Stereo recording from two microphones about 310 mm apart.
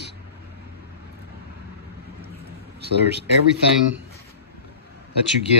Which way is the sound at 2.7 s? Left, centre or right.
Right.